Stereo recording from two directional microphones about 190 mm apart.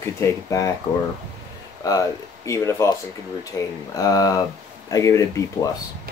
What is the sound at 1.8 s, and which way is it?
Speech, 20° left (ahead or behind).